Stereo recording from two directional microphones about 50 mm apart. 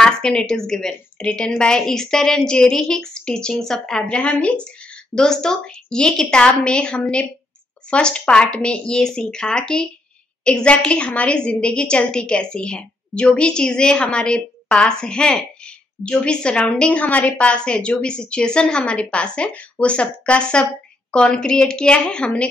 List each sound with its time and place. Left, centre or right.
0.0 s a woman's voice: centre
5.1 s a woman's voice: centre